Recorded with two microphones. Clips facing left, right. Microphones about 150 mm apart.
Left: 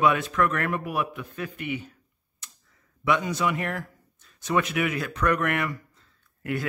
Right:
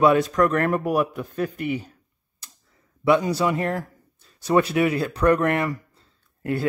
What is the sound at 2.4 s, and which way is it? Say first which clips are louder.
Clicking: even; 35° right (ahead or behind).